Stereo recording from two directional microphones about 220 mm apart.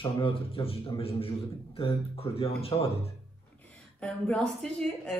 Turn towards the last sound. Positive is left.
turn(degrees=5)  # may be behind; listen again after turning